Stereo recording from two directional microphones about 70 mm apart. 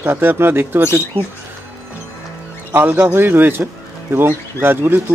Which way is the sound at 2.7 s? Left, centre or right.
Right.